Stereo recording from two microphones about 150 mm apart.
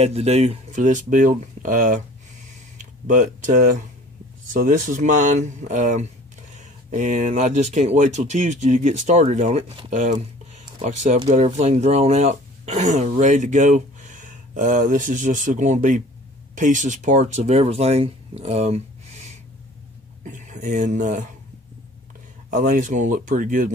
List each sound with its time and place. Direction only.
0.0 s speech: 45° right (ahead or behind)
3.1 s speech: 60° right (ahead or behind)
10.5 s a sound: 50° right (ahead or behind)
11.2 s speech: 50° right (ahead or behind)
22.5 s speech: 60° right (ahead or behind)